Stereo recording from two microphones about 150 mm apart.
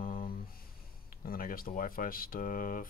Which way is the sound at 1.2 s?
75° left (ahead or behind).